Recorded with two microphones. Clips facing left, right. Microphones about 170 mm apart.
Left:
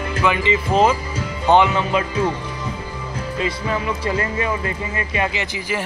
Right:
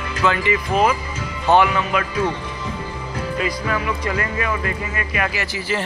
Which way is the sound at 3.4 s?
25° left (ahead or behind).